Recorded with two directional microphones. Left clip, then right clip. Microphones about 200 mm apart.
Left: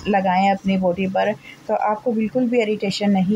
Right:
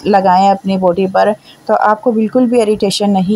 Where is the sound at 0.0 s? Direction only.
30° right (ahead or behind).